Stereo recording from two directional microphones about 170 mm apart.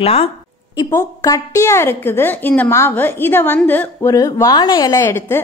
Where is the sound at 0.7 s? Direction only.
20° left (ahead or behind).